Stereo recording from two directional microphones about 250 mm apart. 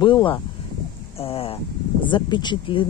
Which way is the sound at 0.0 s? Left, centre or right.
Centre.